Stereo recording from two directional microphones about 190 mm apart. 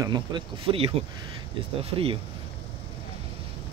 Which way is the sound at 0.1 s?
25° right (ahead or behind).